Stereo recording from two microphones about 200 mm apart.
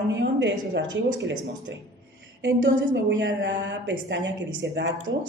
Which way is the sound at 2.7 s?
65° right (ahead or behind).